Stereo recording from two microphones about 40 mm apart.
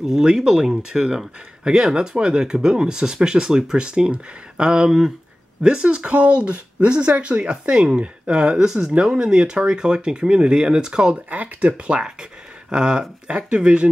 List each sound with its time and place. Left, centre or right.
0.0 s speech: centre
6.1 s speech: right
11.2 s speech: right